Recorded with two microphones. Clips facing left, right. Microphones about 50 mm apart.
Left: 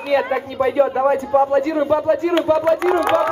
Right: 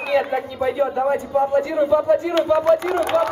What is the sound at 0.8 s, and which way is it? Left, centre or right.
A man's voice, left.